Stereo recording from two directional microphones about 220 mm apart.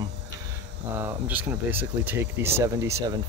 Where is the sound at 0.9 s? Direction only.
10° right (ahead or behind).